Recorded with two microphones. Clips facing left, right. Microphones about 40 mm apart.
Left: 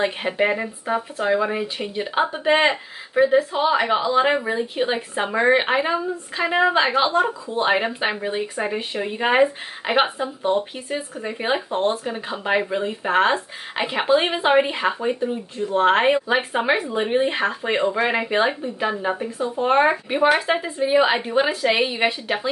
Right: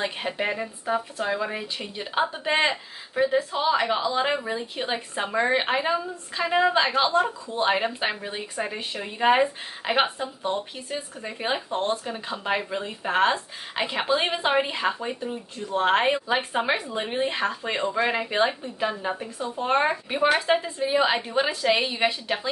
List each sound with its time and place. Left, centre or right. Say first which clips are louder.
0.0 s speech: left 6 dB; centre